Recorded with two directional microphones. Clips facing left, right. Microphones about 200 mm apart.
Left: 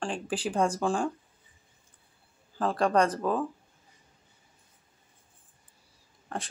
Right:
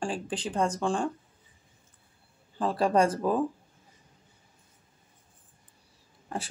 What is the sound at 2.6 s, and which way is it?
Speech, 5° right (ahead or behind).